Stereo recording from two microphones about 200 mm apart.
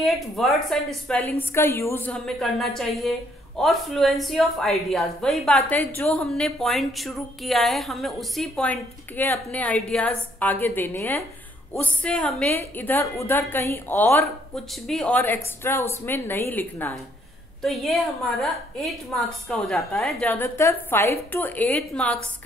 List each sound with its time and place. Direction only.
0.0 s a woman's voice: centre (ahead or behind)